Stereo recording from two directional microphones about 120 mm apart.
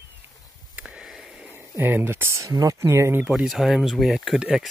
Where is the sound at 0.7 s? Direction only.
5° right (ahead or behind).